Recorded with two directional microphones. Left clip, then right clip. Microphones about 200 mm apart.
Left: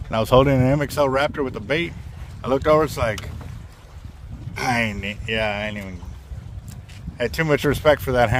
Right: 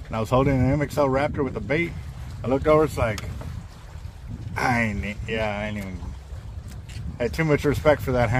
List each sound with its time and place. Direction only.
0.1 s speech: 55° left (ahead or behind)
4.6 s speech: 45° left (ahead or behind)
7.2 s speech: 50° left (ahead or behind)